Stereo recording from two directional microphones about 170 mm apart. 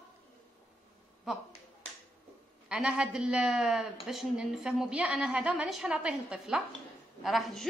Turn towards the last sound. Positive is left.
turn(degrees=0)  # may be behind; listen again after turning